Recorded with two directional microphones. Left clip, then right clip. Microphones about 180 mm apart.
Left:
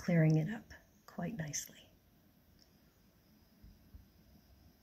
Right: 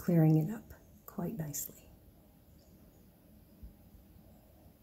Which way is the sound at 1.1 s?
10° right (ahead or behind).